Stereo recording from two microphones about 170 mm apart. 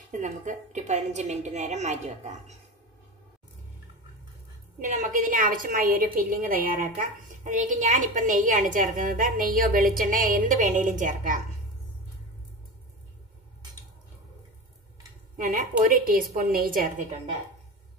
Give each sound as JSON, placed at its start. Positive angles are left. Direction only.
{"t": 0.2, "sound": "a woman's voice", "side_deg": -45}
{"t": 4.7, "sound": "a woman's voice", "side_deg": -50}
{"t": 15.3, "sound": "a woman's voice", "side_deg": -50}